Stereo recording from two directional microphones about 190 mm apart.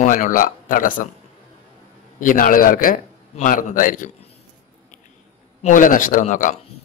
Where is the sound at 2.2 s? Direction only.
45° left (ahead or behind).